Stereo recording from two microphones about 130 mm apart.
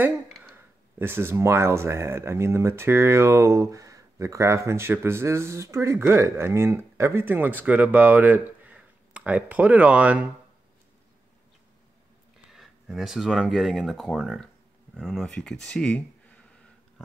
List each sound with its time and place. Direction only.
0.9 s speech: 15° right (ahead or behind)
12.4 s speech: centre (ahead or behind)